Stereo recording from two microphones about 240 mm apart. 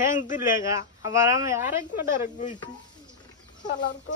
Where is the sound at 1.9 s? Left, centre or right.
Left.